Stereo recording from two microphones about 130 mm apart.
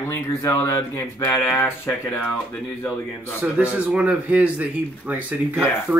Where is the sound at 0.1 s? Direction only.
25° left (ahead or behind).